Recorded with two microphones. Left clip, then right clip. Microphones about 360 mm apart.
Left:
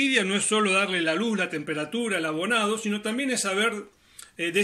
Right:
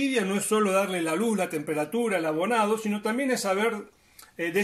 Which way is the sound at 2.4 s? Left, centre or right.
Right.